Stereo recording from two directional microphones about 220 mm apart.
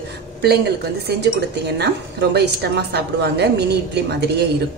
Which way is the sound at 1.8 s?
50° right (ahead or behind).